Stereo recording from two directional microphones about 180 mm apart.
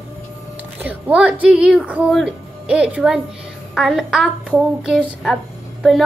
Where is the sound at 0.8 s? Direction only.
10° right (ahead or behind).